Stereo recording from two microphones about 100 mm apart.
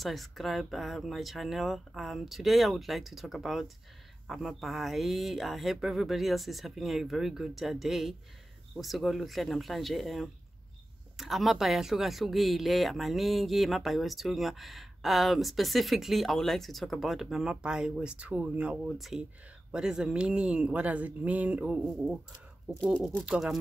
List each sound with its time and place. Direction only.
0.0 s speech: centre (ahead or behind)
23.2 s speech: 10° right (ahead or behind)